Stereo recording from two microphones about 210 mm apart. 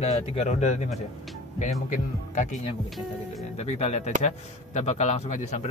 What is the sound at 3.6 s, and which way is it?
Speech, 30° left (ahead or behind).